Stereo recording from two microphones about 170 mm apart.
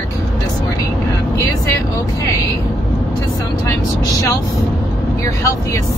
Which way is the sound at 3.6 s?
20° left (ahead or behind).